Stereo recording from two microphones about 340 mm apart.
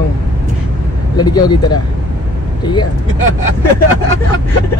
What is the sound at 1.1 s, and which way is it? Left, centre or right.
Speech, centre.